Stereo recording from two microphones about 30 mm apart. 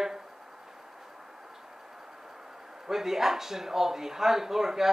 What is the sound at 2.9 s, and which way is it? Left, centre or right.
Speech, centre.